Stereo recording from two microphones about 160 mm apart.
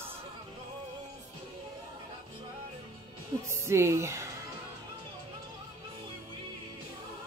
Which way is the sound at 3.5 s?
15° right (ahead or behind).